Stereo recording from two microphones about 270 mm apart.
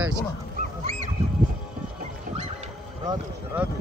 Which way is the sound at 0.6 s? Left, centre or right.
Right.